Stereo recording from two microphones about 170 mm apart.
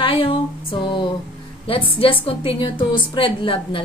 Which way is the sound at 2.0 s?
35° left (ahead or behind).